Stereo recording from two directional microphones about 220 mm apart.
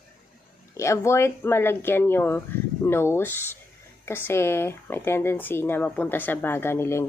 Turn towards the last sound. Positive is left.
turn(degrees=10)  # may be behind; listen again after turning